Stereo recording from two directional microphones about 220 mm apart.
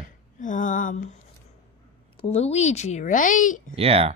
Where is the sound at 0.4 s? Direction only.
35° left (ahead or behind).